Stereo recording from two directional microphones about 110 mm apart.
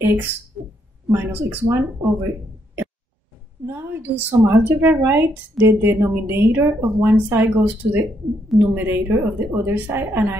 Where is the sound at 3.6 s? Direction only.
20° right (ahead or behind).